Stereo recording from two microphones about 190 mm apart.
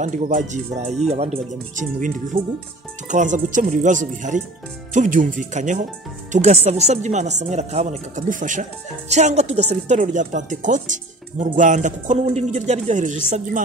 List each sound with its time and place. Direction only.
0.0 s speech: 40° right (ahead or behind)